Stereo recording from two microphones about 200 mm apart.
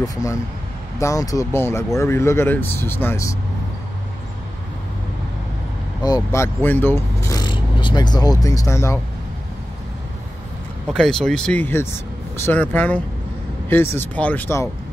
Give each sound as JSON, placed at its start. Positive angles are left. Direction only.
{"t": 0.0, "sound": "speech", "side_deg": 15}
{"t": 6.0, "sound": "speech", "side_deg": 15}
{"t": 10.9, "sound": "speech", "side_deg": 0}